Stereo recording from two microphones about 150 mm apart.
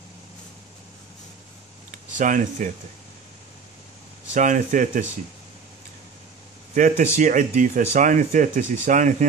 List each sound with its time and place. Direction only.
1.9 s speech: 60° right (ahead or behind)
4.3 s speech: 55° right (ahead or behind)
6.7 s speech: 55° right (ahead or behind)